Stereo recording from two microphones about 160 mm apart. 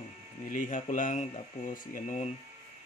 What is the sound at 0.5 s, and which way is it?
Speech, 55° left (ahead or behind).